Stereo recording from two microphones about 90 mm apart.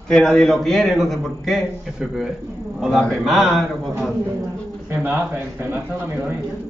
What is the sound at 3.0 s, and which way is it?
Speech, centre (ahead or behind).